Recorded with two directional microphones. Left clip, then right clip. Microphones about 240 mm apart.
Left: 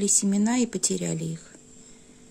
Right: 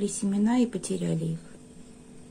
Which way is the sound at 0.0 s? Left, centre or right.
Left.